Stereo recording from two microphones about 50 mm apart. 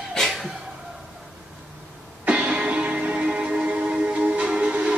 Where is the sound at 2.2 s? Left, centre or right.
Centre.